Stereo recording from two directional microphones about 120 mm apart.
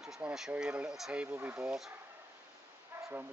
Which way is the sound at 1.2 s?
15° right (ahead or behind).